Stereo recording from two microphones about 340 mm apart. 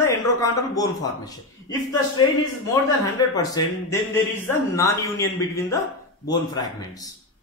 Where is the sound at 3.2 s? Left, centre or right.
Centre.